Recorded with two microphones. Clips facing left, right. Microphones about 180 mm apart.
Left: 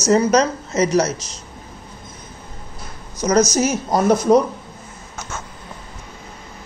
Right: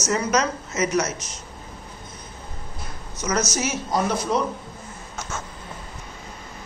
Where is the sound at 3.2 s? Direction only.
35° left (ahead or behind).